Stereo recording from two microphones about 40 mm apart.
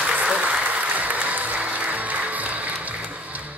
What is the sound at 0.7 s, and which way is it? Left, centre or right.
Music, right.